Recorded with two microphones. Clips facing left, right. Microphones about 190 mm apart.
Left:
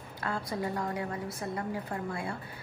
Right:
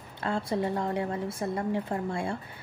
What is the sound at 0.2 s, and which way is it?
A woman's voice, 25° right (ahead or behind).